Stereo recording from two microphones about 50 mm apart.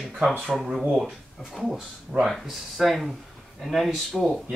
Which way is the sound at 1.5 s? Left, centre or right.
Centre.